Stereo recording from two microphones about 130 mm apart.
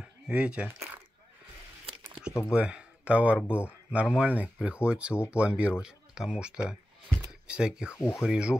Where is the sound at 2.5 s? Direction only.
5° right (ahead or behind).